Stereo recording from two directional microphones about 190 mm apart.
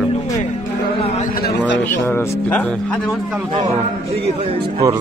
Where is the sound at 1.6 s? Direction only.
10° left (ahead or behind).